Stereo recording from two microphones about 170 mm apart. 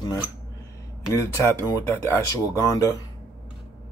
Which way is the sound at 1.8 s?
15° left (ahead or behind).